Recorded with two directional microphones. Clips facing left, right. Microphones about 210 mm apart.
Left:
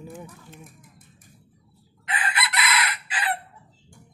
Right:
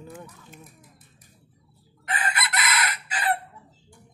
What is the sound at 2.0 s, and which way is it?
Chicken, 45° right (ahead or behind).